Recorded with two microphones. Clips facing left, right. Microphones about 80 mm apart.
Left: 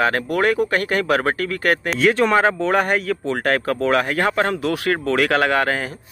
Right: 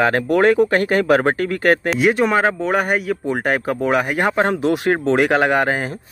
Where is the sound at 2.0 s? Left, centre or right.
Centre.